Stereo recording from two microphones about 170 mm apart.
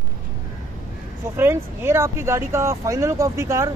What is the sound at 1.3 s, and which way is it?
Speech, 15° right (ahead or behind).